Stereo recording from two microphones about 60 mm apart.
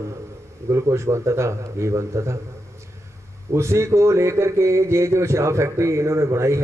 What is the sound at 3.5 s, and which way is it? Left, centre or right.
A man's voice, right.